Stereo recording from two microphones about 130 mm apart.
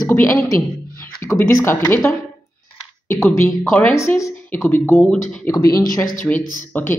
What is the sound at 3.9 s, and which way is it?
Speech, 25° left (ahead or behind).